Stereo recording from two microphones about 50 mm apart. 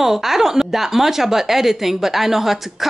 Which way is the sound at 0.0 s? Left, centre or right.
Centre.